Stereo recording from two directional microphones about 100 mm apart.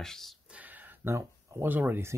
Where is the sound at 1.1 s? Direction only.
25° right (ahead or behind).